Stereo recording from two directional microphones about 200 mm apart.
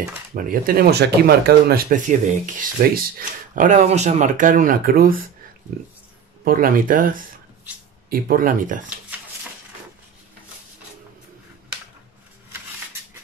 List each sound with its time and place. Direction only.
0.3 s speech: 45° right (ahead or behind)
6.4 s speech: 45° right (ahead or behind)